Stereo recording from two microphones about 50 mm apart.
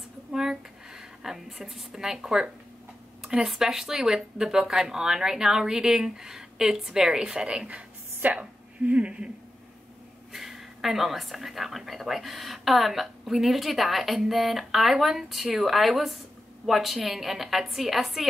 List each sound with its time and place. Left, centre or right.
0.3 s speech: centre
3.2 s a sound: centre
3.4 s speech: centre; by 9.3 s right
10.3 s speech: centre